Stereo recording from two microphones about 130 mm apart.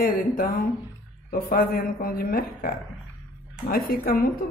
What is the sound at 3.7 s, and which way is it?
Speech, 90° left.